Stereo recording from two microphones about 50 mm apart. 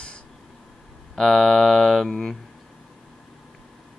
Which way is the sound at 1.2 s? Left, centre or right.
Centre.